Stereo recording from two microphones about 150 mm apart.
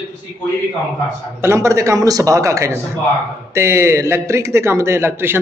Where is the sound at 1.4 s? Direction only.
20° right (ahead or behind).